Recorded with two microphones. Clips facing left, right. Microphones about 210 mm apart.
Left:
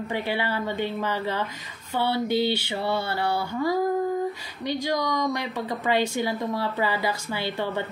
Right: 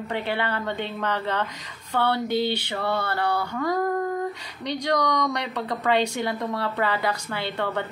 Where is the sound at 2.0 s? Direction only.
55° right (ahead or behind).